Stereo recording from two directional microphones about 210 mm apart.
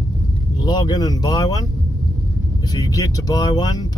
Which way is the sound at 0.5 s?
20° left (ahead or behind).